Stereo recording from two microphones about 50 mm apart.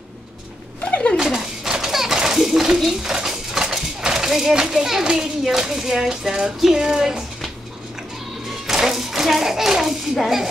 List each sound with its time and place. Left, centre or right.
1.1 s a sound: centre
2.8 s speech: centre
8.6 s a child's voice: centre